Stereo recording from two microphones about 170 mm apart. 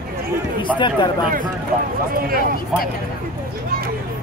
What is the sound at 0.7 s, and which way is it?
Speech, 30° left (ahead or behind).